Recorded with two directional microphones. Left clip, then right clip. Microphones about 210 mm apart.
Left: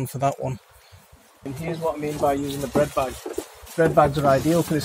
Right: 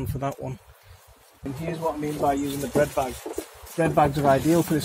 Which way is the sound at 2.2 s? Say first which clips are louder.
Left 2 dB; 10° left (ahead or behind).